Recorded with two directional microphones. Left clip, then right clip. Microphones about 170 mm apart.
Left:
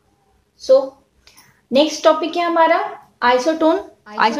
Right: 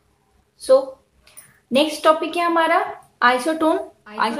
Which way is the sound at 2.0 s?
10° left (ahead or behind).